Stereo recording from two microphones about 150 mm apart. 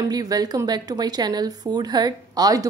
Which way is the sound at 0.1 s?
25° right (ahead or behind).